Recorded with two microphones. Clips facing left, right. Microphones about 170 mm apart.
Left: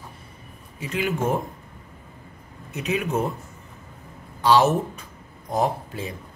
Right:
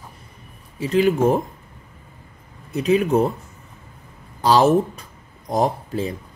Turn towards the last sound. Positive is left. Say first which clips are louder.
# right 4 dB
turn(degrees=-35)  # may be behind; listen again after turning